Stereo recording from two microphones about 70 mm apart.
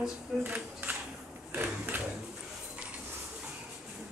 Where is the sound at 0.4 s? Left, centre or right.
Right.